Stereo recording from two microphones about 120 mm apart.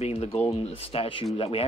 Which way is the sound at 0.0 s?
55° left (ahead or behind).